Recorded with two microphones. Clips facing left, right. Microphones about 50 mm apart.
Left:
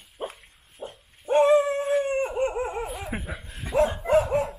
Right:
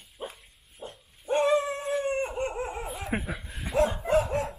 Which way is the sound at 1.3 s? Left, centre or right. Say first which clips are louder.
Left 5 dB; centre.